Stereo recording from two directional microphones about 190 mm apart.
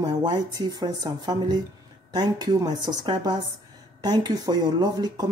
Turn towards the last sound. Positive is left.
turn(degrees=-20)  # may be behind; listen again after turning